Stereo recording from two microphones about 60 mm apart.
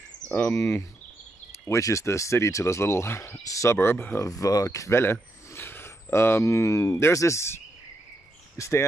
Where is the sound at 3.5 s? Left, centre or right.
Left.